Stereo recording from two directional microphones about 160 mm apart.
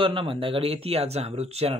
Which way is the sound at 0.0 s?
35° right (ahead or behind).